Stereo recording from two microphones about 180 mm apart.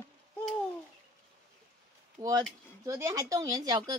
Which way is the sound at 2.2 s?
15° right (ahead or behind).